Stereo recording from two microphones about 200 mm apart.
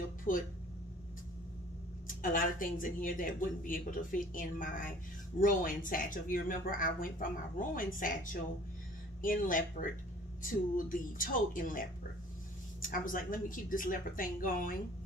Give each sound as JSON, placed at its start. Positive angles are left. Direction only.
{"t": 0.3, "sound": "speech", "side_deg": 45}
{"t": 2.0, "sound": "speech", "side_deg": 45}